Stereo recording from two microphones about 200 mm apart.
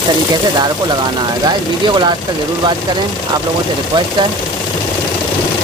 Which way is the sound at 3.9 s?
25° right (ahead or behind).